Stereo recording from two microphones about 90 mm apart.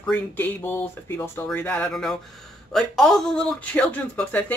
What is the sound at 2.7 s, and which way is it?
Speech, 5° left (ahead or behind).